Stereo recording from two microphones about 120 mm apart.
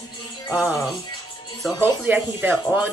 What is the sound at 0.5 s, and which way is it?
Speech, 5° right (ahead or behind).